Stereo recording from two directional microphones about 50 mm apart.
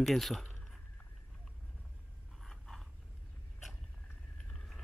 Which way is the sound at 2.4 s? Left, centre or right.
Centre.